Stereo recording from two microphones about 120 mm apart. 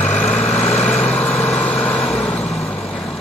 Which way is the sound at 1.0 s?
15° left (ahead or behind).